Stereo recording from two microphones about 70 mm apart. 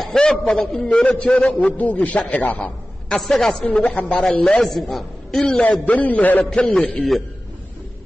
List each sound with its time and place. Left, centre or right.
0.0 s a man's voice: centre; by 2.7 s left
3.1 s a man's voice: centre
5.6 s speech: centre
6.5 s a man's voice: centre